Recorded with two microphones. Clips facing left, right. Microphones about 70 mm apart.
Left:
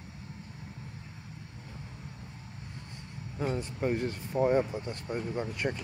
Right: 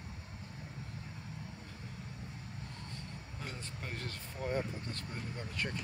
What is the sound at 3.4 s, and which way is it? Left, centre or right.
Speech, centre.